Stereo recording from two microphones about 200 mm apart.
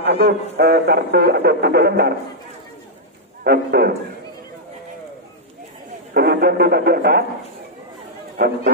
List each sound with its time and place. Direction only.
0.0 s a man's voice: 50° right (ahead or behind)
3.4 s a man's voice: 50° right (ahead or behind)
6.1 s a man's voice: 50° right (ahead or behind)
8.4 s a man's voice: 55° right (ahead or behind)